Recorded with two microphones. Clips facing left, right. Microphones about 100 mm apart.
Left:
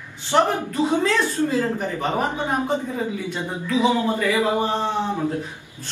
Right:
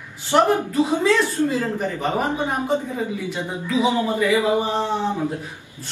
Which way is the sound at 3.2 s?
15° right (ahead or behind).